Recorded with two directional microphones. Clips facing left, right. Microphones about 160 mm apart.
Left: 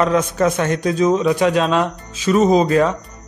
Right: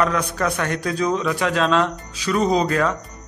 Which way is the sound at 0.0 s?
25° left (ahead or behind).